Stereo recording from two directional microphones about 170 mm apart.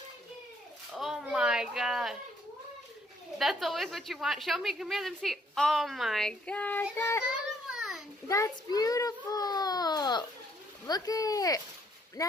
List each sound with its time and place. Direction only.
0.9 s a child's voice: centre (ahead or behind)
3.3 s a woman's voice: centre (ahead or behind); by 7.2 s 15° left (ahead or behind)
7.7 s a sound: centre (ahead or behind)
8.3 s child singing: 20° left (ahead or behind)
10.9 s speech: 20° left (ahead or behind)